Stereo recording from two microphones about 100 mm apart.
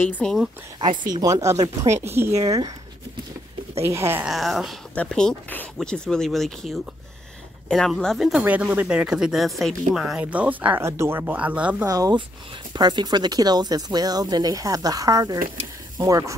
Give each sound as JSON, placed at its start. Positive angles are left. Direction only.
{"t": 0.0, "sound": "speech", "side_deg": 15}
{"t": 0.7, "sound": "speech", "side_deg": -45}
{"t": 2.4, "sound": "speech", "side_deg": -35}
{"t": 3.8, "sound": "speech", "side_deg": -25}
{"t": 4.3, "sound": "speech", "side_deg": 0}
{"t": 8.4, "sound": "speech", "side_deg": -15}
{"t": 10.8, "sound": "speech", "side_deg": -25}
{"t": 11.8, "sound": "speech", "side_deg": -40}